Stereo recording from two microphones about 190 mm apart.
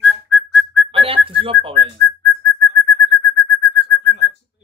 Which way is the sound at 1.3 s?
30° right (ahead or behind).